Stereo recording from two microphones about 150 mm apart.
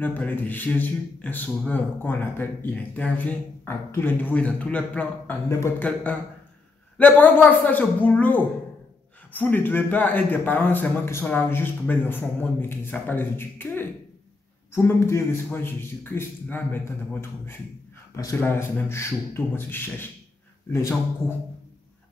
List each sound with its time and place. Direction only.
0.0 s a man's voice: 10° left (ahead or behind)
7.0 s a man's voice: 10° left (ahead or behind)